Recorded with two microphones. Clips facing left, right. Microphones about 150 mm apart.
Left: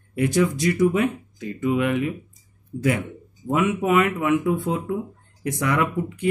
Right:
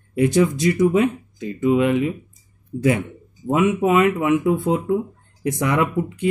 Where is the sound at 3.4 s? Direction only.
25° right (ahead or behind).